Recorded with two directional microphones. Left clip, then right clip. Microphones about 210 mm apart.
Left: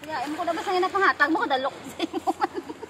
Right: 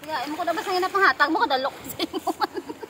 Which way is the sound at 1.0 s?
20° right (ahead or behind).